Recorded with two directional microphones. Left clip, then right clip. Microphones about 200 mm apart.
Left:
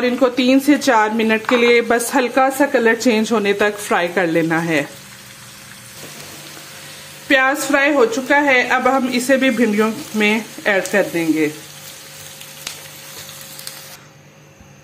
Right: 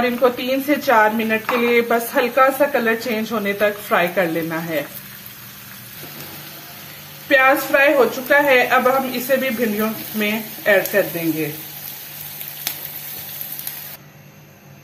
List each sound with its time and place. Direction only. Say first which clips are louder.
0.2 s speech: left 3 dB; 55° left (ahead or behind)
7.2 s speech: right 1 dB; 50° left (ahead or behind)